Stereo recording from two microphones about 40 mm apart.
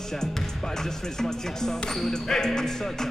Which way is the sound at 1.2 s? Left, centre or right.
Centre.